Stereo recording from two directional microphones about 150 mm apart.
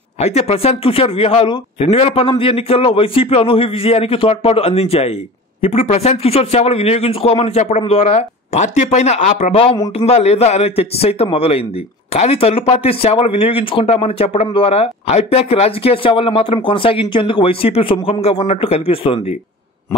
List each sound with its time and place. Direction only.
0.2 s speech: 45° left (ahead or behind)